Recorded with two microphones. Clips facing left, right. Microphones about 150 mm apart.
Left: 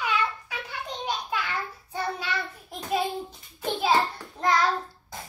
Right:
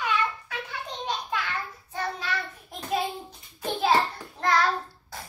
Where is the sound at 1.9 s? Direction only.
10° left (ahead or behind).